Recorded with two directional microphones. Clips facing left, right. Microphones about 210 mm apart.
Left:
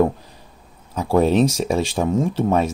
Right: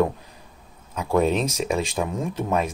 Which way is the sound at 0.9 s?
35° left (ahead or behind).